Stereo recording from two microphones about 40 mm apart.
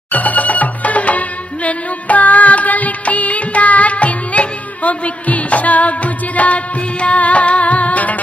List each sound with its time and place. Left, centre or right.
0.1 s music: left